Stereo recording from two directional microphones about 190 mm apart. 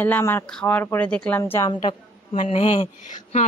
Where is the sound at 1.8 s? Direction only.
30° left (ahead or behind).